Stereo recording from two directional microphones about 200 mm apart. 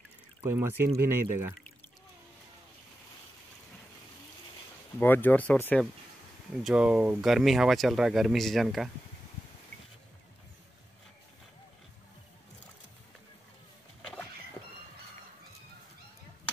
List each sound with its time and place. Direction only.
0.4 s speech: 10° right (ahead or behind)
4.9 s speech: 10° left (ahead or behind)
6.5 s speech: 5° right (ahead or behind)